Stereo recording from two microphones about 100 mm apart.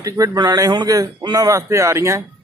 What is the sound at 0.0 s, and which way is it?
Speech, 35° right (ahead or behind).